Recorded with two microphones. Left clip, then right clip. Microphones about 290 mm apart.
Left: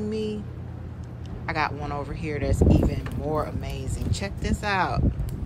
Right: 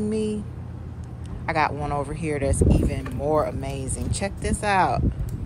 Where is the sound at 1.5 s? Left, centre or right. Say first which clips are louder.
Right 4 dB; centre.